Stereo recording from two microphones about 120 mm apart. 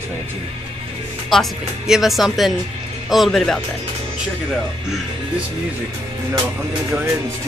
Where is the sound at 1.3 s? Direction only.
Centre (ahead or behind).